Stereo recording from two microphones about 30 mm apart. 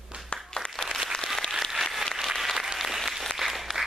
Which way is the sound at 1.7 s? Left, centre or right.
Centre.